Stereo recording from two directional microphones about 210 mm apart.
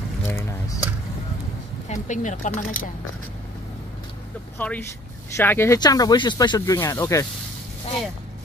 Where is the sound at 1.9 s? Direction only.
35° left (ahead or behind).